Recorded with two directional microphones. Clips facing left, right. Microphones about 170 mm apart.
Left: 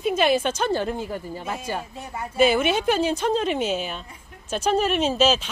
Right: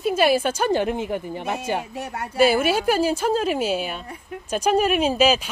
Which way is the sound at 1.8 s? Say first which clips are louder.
Right 3 dB; 75° right (ahead or behind).